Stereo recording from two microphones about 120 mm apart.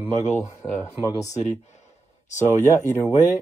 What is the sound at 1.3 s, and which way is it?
Speech, 75° left (ahead or behind).